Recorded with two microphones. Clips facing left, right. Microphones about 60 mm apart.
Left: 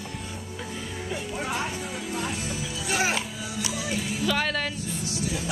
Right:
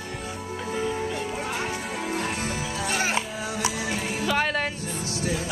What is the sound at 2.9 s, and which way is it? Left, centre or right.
Music, centre.